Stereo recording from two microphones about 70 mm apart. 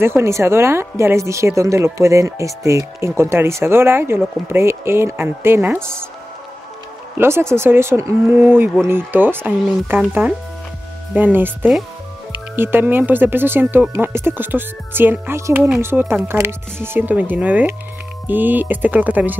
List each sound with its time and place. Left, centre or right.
0.0 s a woman's voice: right
7.2 s a woman's voice: right
17.1 s speech: right